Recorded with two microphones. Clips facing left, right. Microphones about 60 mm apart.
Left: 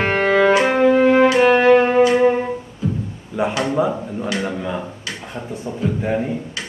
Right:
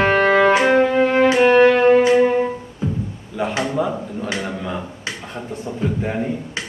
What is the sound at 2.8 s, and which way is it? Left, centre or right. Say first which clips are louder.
Music: left 1 dB; right.